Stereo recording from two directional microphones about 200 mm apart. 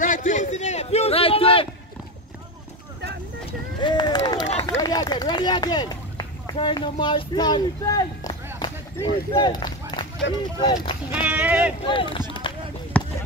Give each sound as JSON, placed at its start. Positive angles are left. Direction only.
{"t": 0.0, "sound": "a sound", "side_deg": 40}
{"t": 3.8, "sound": "run", "side_deg": 20}
{"t": 4.6, "sound": "speech", "side_deg": 20}
{"t": 8.5, "sound": "a sound", "side_deg": 20}
{"t": 9.3, "sound": "run", "side_deg": 20}
{"t": 10.6, "sound": "speech", "side_deg": 20}
{"t": 11.1, "sound": "speech", "side_deg": -5}
{"t": 11.8, "sound": "speech", "side_deg": 25}
{"t": 12.4, "sound": "run", "side_deg": 25}
{"t": 12.9, "sound": "basketball bounce", "side_deg": 5}